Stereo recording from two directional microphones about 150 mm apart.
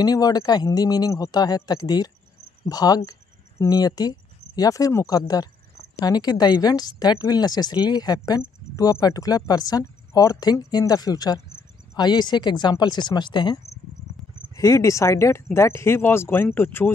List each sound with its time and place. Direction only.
0.0 s speech: 25° left (ahead or behind)